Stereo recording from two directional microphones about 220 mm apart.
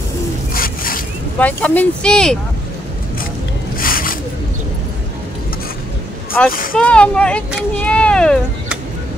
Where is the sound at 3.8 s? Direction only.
40° left (ahead or behind).